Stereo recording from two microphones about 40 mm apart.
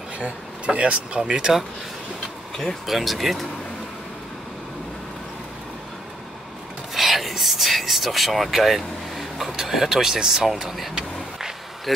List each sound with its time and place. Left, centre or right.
0.2 s speech: right
2.5 s speech: centre
2.9 s speech: centre
6.9 s speech: centre